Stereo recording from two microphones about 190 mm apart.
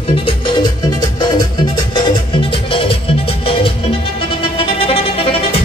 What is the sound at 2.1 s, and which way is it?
Music, 25° left (ahead or behind).